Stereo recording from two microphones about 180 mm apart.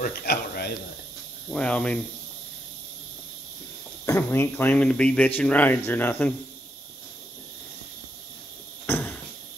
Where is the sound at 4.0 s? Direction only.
15° left (ahead or behind).